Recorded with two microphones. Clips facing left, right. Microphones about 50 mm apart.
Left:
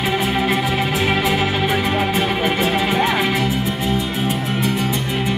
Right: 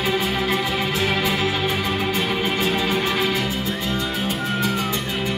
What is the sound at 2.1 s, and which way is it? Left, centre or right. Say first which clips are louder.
Music: left 4 dB; left.